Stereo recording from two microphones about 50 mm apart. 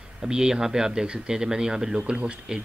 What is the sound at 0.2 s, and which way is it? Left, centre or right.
Speech, centre.